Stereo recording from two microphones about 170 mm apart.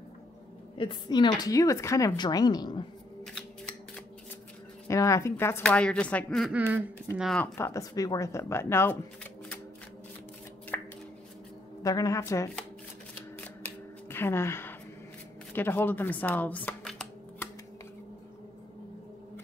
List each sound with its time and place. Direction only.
0.7 s speech: 30° left (ahead or behind)
4.8 s speech: 15° left (ahead or behind)
6.5 s speech: 10° right (ahead or behind)
7.5 s speech: 15° left (ahead or behind)
10.7 s hands: 10° left (ahead or behind)
11.8 s speech: 20° left (ahead or behind)
14.0 s a sound: 15° left (ahead or behind)